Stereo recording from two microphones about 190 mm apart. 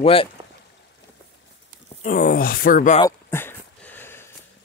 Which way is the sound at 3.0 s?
10° left (ahead or behind).